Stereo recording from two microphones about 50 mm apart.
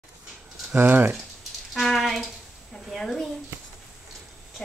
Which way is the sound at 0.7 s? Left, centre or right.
Right.